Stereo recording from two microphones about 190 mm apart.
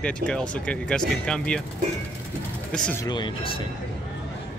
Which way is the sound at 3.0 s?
25° left (ahead or behind).